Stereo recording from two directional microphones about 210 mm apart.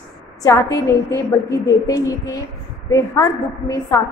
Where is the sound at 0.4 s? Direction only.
15° left (ahead or behind).